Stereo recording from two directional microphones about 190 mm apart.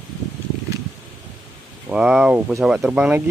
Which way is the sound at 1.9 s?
5° right (ahead or behind).